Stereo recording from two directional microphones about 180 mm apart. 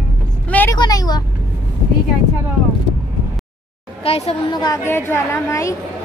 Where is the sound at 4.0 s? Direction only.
35° left (ahead or behind); by 5.8 s 15° left (ahead or behind).